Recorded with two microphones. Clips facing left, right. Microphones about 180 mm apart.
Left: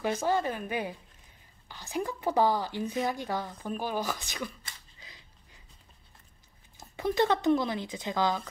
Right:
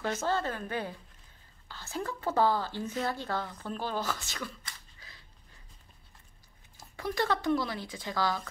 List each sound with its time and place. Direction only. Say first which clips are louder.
0.0 s a woman's voice: left 3 dB; 15° left (ahead or behind)
4.6 s a sound: even; 15° left (ahead or behind)
6.8 s speech: left 5 dB; 20° left (ahead or behind)